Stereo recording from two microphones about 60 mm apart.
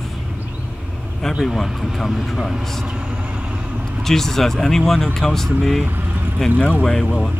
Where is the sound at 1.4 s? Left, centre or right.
Centre.